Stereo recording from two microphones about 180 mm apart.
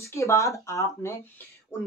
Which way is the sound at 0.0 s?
15° left (ahead or behind).